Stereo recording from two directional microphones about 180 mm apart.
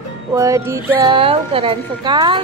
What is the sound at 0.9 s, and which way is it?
Child singing, 30° right (ahead or behind).